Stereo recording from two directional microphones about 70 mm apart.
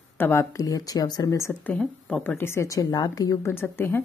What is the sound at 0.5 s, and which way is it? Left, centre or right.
Speech, left.